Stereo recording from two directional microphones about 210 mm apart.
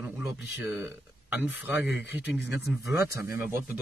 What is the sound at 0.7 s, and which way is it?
Speech, 10° right (ahead or behind).